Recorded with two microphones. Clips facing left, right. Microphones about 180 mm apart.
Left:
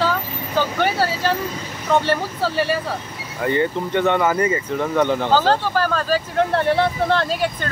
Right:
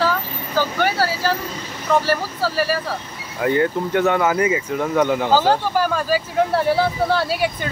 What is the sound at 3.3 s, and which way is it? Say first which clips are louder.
Speech: right 2 dB; 5° right (ahead or behind).